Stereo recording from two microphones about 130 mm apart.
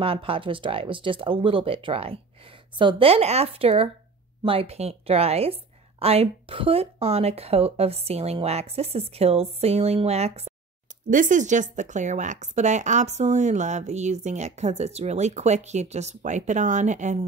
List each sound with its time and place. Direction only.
0.0 s a woman's voice: 45° right (ahead or behind)
11.1 s speech: 85° right; by 17.3 s 65° right (ahead or behind)